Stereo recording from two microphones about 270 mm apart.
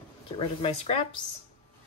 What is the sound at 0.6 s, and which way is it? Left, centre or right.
Speech, left.